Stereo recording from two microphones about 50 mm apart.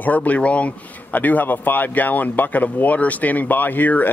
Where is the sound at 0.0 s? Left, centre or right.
Left.